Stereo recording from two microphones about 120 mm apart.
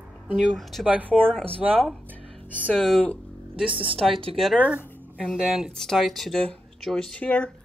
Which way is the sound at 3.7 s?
45° right (ahead or behind).